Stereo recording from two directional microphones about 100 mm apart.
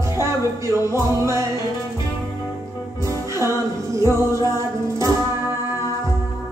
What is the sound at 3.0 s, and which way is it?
Music, 30° right (ahead or behind).